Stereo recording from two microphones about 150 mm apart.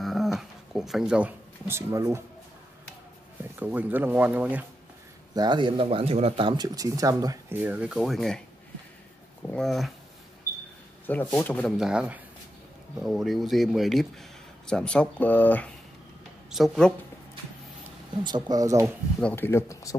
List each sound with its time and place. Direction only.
0.0 s a sound: centre (ahead or behind); by 2.2 s 20° right (ahead or behind)
3.5 s speech: 10° right (ahead or behind)
5.3 s speech: 30° right (ahead or behind)
7.5 s speech: 10° right (ahead or behind)
9.5 s speech: centre (ahead or behind)
11.1 s speech: 10° left (ahead or behind)
11.7 s speech: 5° right (ahead or behind); by 15.7 s 10° left (ahead or behind)
16.4 s speech: centre (ahead or behind)
18.2 s speech: 25° right (ahead or behind)
19.3 s speech: 15° left (ahead or behind)